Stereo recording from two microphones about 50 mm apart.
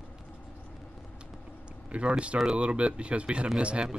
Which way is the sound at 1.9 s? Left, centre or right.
Right.